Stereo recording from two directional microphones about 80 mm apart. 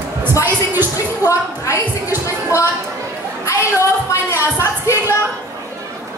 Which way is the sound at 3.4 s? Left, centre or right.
Left.